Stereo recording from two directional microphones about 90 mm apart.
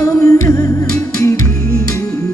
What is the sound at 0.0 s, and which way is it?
Music, 30° left (ahead or behind).